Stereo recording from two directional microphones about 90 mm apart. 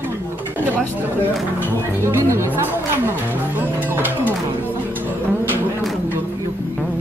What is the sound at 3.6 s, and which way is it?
Music, 20° right (ahead or behind).